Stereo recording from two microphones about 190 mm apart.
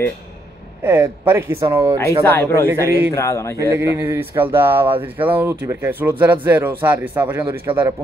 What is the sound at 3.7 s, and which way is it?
Speech, 10° right (ahead or behind).